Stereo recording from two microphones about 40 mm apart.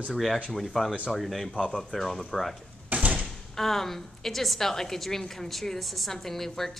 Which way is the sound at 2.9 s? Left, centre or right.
Right.